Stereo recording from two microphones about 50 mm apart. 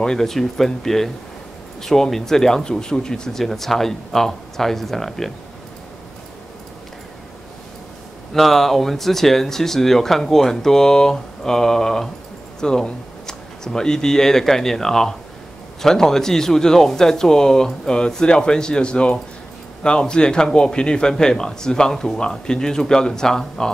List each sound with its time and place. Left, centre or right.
0.0 s speech: centre
8.3 s speech: centre